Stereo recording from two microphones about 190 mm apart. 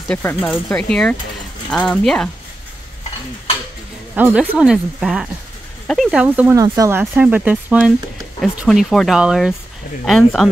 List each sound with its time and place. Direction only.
0.1 s speech: 10° left (ahead or behind)
4.1 s speech: 10° right (ahead or behind)